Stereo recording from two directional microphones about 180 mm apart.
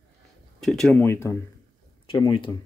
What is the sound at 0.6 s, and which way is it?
Speech, centre (ahead or behind).